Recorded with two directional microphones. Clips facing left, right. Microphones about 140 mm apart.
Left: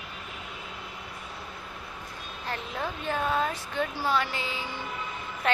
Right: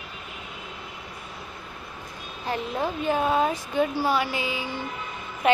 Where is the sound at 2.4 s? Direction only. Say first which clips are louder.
Right 6 dB; 20° right (ahead or behind).